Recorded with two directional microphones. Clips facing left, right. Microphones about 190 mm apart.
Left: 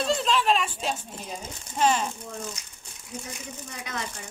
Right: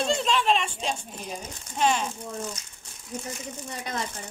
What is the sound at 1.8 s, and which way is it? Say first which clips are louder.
Speech: left 1 dB; centre (ahead or behind).